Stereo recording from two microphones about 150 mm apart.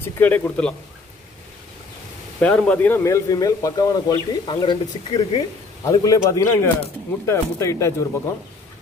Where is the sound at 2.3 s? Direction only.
10° left (ahead or behind).